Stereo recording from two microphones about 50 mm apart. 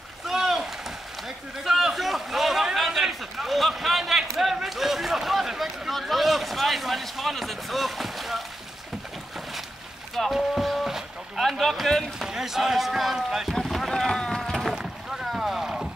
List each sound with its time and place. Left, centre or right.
0.3 s rowboat: centre
1.6 s a sound: centre
10.3 s boat: centre
11.5 s run: centre
12.2 s rowboat: centre
13.6 s boat: centre